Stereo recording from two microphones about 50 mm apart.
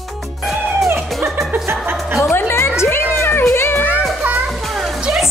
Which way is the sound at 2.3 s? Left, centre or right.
Left.